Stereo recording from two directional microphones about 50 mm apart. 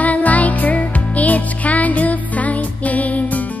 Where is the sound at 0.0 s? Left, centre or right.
Left.